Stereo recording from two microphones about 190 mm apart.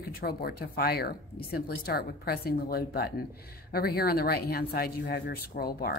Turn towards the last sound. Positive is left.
turn(degrees=55)  # may be behind; listen again after turning